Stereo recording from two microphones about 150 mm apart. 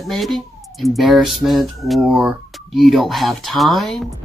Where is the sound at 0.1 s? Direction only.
Centre (ahead or behind).